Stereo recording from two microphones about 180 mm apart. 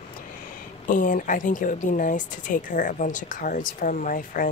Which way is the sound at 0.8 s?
45° left (ahead or behind).